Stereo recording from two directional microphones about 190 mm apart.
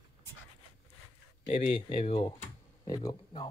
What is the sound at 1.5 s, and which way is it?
Speech, 40° left (ahead or behind).